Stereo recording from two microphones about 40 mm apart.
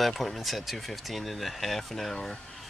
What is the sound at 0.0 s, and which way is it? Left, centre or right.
Speech, centre.